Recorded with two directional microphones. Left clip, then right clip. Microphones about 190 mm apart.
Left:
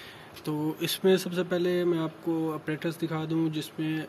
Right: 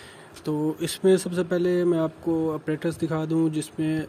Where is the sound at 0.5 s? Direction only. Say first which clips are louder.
Right 4 dB; 30° right (ahead or behind).